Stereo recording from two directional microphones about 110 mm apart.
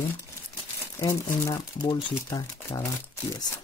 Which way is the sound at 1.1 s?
25° left (ahead or behind).